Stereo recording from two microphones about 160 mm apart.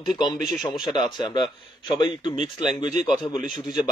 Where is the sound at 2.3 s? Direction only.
45° right (ahead or behind).